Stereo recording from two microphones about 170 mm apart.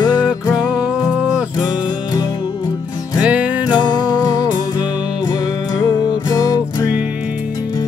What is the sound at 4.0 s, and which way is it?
Music, 25° left (ahead or behind).